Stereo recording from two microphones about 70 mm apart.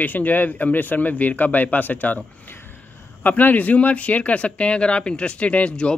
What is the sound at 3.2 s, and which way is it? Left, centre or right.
Speech, left.